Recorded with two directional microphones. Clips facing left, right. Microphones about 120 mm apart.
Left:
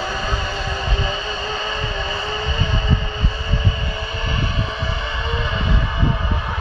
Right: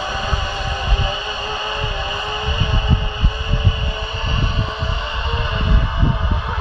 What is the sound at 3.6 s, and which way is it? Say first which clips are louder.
Vehicle: right 1 dB; 25° right (ahead or behind).